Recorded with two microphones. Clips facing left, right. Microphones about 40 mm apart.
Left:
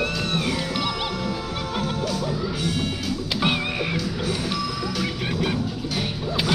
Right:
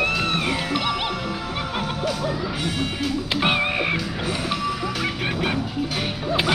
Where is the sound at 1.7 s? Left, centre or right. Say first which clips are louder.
Left 1 dB; right.